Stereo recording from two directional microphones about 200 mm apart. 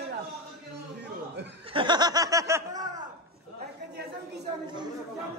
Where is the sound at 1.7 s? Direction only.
25° right (ahead or behind).